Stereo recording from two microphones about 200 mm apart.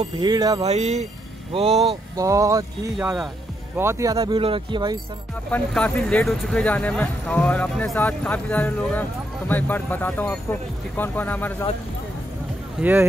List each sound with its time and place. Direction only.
0.0 s speech: 20° right (ahead or behind)
0.7 s speech: 35° right (ahead or behind)
2.1 s speech: 15° right (ahead or behind)
4.2 s speech: 25° right (ahead or behind)
5.5 s speech: 5° left (ahead or behind)